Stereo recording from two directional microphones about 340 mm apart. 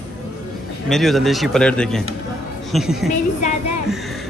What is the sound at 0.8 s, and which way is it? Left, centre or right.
A man's voice, centre.